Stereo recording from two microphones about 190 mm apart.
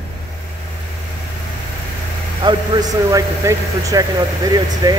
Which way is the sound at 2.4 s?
20° right (ahead or behind).